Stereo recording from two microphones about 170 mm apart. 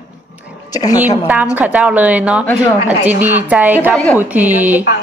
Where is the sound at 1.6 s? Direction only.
5° right (ahead or behind).